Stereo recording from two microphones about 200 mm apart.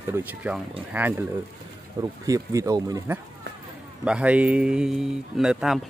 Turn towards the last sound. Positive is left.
turn(degrees=-5)  # may be behind; listen again after turning